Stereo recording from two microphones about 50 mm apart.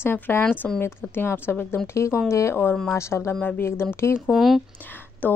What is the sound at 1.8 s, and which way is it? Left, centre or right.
A woman's voice, left.